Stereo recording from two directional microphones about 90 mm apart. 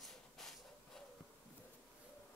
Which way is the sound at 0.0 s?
Centre (ahead or behind).